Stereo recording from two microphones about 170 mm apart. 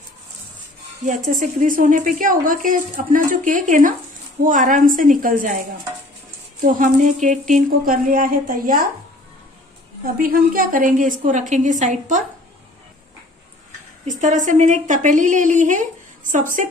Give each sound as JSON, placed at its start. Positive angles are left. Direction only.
{"t": 1.4, "sound": "a woman's voice", "side_deg": -50}
{"t": 6.6, "sound": "speech", "side_deg": -50}
{"t": 10.1, "sound": "a woman's voice", "side_deg": -55}
{"t": 14.0, "sound": "a woman's voice", "side_deg": -45}